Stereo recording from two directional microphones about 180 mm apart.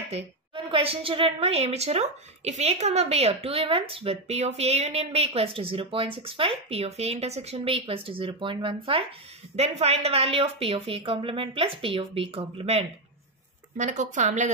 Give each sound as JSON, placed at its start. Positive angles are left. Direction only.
{"t": 0.7, "sound": "a woman's voice", "side_deg": -30}